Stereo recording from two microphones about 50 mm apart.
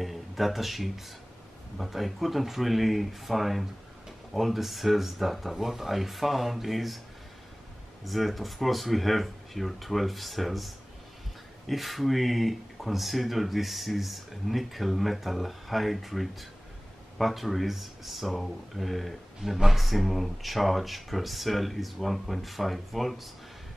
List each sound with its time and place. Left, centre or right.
0.0 s speech: centre
8.0 s speech: centre